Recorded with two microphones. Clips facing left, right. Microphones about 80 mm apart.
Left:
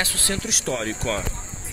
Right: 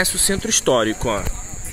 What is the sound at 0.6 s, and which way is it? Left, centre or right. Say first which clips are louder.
Speech: right 12 dB; right.